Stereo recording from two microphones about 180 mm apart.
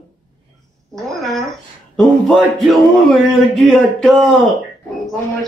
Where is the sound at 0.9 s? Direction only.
Centre (ahead or behind).